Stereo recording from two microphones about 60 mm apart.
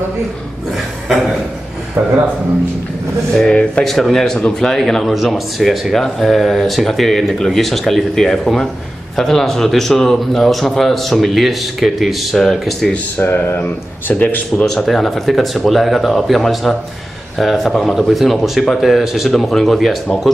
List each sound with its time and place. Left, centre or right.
3.3 s speech: centre
13.2 s speech: left
14.7 s speech: centre